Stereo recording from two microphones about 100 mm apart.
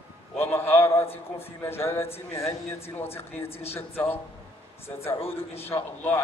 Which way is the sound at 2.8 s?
80° left.